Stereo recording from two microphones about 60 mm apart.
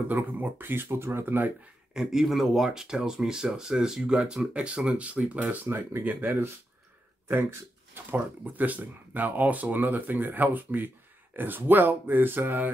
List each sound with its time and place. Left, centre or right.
0.1 s speech: right
2.0 s speech: centre; by 5.7 s right
5.7 s speech: right
7.9 s speech: right